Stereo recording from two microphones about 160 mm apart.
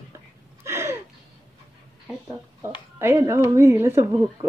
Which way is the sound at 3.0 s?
15° right (ahead or behind).